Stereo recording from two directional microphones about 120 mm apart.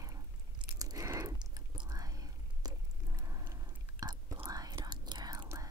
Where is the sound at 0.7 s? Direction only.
30° right (ahead or behind).